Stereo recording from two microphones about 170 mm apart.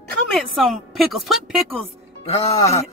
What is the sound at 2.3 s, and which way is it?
Speech, 40° left (ahead or behind).